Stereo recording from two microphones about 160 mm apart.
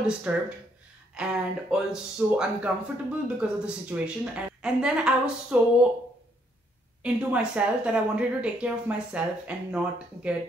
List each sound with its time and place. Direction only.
0.0 s speech: 10° right (ahead or behind)
7.0 s speech: 10° right (ahead or behind)